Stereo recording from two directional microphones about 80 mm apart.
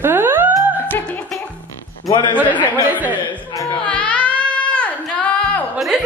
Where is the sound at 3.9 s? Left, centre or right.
Centre.